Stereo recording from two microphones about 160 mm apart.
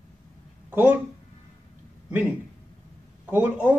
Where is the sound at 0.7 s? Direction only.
10° right (ahead or behind).